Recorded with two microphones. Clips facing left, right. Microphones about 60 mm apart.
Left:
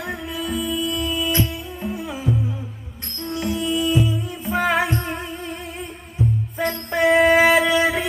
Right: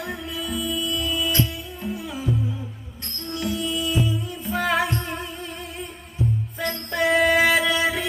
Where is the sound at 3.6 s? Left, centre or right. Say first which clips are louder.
Left 6 dB; centre.